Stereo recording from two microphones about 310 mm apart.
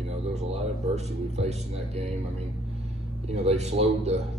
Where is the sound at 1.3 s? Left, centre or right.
Right.